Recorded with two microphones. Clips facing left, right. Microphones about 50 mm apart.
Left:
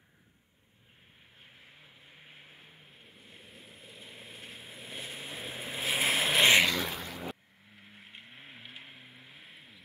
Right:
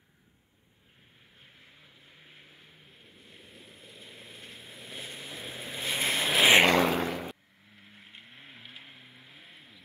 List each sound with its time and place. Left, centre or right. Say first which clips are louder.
1.4 s vehicle: left 1 dB; centre
2.9 s waves: even; centre
6.6 s vehicle: right 7 dB; right
7.7 s vehicle: even; centre